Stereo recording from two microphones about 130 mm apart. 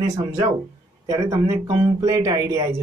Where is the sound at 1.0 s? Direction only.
25° right (ahead or behind).